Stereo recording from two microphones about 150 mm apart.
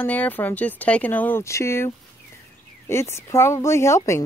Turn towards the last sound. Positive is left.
turn(degrees=20)  # may be behind; listen again after turning